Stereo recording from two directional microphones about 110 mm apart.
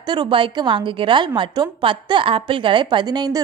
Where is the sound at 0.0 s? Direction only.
40° right (ahead or behind).